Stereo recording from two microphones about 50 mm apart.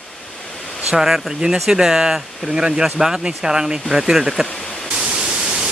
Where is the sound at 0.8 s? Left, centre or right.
Centre.